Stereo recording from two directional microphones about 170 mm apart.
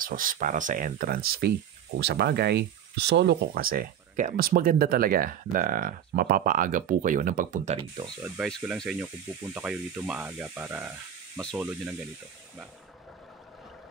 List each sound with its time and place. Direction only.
0.0 s speech: 55° right (ahead or behind)
2.0 s speech: 75° right (ahead or behind); by 7.8 s 45° right (ahead or behind)
8.2 s speech: centre (ahead or behind)